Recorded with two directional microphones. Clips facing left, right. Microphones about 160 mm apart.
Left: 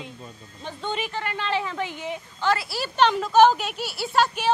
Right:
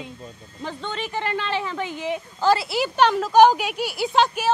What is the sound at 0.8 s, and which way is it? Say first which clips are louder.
Speech: left 3 dB; 10° left (ahead or behind).